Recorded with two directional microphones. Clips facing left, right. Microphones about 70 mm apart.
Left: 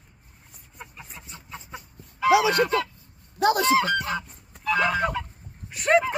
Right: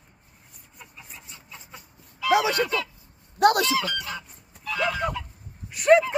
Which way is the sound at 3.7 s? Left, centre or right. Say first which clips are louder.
Left 6 dB; left.